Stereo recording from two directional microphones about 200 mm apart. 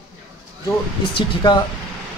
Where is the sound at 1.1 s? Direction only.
20° left (ahead or behind).